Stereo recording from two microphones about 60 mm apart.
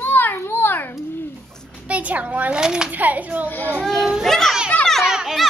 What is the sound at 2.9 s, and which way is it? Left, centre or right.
Speech, right.